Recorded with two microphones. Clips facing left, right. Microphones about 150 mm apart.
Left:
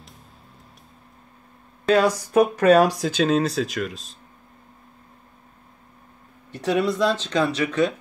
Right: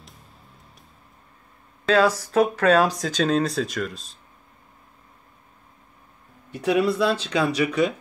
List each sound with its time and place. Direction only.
1.9 s speech: 10° left (ahead or behind)
6.5 s speech: 10° right (ahead or behind)